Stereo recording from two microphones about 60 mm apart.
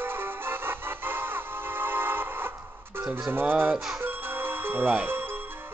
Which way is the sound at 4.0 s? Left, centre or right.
Right.